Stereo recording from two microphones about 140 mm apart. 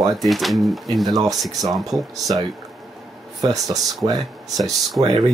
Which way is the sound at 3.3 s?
25° right (ahead or behind).